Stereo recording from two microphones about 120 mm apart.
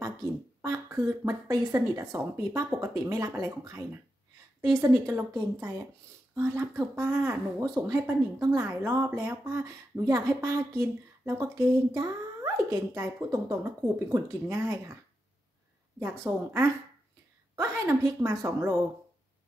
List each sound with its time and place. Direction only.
0.6 s speech: 25° right (ahead or behind)
6.3 s speech: 20° right (ahead or behind)
16.0 s speech: 20° right (ahead or behind)